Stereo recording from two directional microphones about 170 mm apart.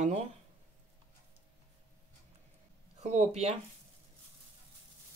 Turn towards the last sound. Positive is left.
turn(degrees=-40)  # may be behind; listen again after turning